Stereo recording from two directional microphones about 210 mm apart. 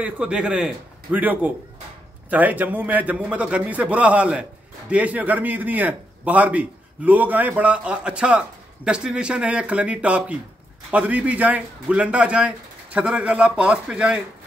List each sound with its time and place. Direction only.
0.0 s a man's voice: 5° right (ahead or behind)